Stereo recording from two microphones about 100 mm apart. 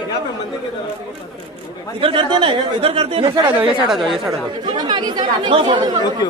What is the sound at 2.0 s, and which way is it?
Speech, 60° right (ahead or behind).